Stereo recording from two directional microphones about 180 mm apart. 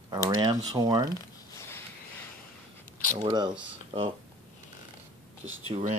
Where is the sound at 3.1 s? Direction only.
25° right (ahead or behind).